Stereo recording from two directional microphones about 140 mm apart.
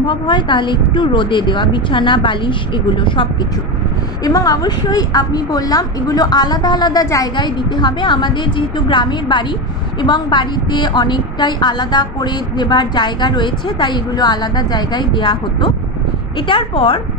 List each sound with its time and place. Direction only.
0.0 s a woman's voice: 35° left (ahead or behind)